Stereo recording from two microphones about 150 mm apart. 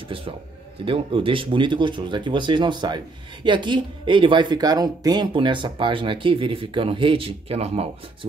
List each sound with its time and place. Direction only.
0.8 s speech: 35° right (ahead or behind)